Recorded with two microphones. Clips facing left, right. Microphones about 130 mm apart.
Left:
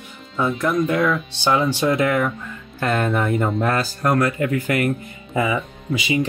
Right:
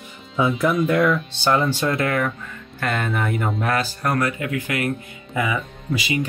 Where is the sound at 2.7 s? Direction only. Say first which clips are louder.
Left 4 dB; 35° left (ahead or behind).